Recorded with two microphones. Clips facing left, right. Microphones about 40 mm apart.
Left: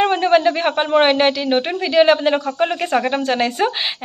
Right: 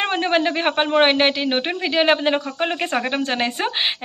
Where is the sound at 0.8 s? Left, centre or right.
Centre.